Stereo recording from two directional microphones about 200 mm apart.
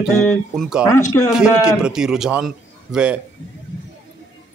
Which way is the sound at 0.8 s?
15° left (ahead or behind).